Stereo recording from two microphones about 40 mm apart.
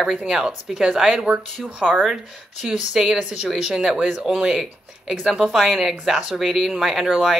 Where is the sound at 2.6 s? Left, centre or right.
Centre.